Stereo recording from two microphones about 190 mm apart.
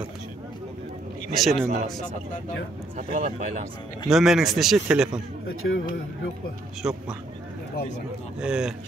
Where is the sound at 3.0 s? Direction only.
45° right (ahead or behind).